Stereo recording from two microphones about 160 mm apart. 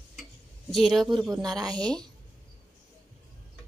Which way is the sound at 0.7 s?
Centre (ahead or behind).